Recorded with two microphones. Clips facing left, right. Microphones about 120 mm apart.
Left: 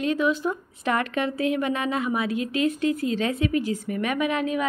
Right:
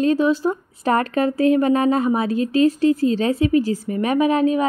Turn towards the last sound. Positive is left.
turn(degrees=-35)  # may be behind; listen again after turning